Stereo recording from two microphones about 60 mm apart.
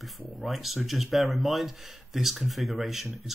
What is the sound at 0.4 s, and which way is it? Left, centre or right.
Speech, centre.